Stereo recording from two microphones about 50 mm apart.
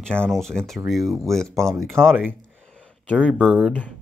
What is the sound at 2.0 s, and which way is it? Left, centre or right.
Speech, right.